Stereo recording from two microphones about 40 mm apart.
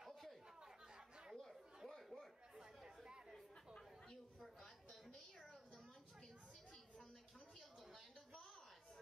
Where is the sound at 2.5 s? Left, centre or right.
Centre.